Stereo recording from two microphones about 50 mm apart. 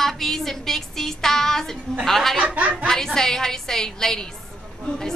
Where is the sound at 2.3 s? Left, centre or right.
Right.